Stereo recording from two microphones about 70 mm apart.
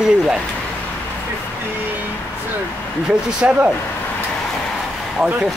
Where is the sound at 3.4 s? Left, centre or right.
Centre.